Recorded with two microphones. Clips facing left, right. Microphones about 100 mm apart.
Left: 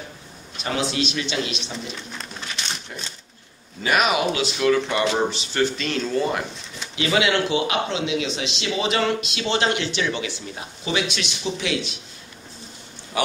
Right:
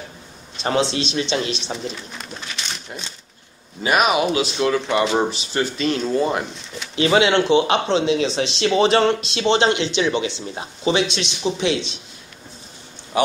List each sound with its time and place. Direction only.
0.6 s speech: 30° right (ahead or behind)
3.8 s speech: 20° right (ahead or behind)
13.1 s a sound: 25° right (ahead or behind)